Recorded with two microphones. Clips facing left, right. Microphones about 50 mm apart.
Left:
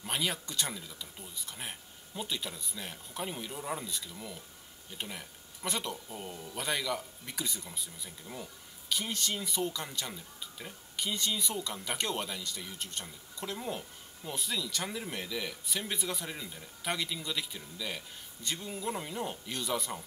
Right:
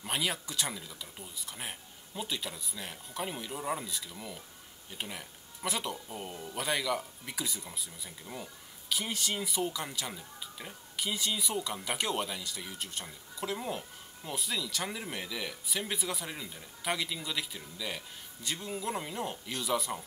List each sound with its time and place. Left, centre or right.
0.0 s speech: centre
6.0 s speech: centre
6.5 s speech: centre